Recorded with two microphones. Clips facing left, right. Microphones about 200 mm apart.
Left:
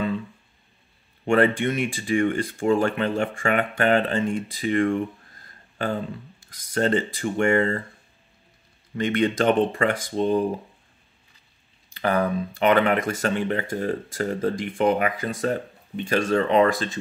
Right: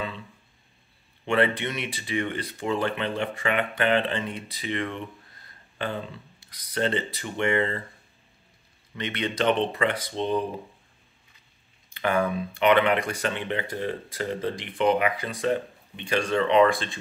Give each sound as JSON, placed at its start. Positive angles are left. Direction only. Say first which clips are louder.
{"t": 1.2, "sound": "speech", "louder": "left 4 dB", "side_deg": 45}
{"t": 6.4, "sound": "speech", "louder": "left 4 dB", "side_deg": 45}
{"t": 8.9, "sound": "speech", "louder": "left 7 dB", "side_deg": 45}
{"t": 11.9, "sound": "speech", "louder": "left 2 dB", "side_deg": 35}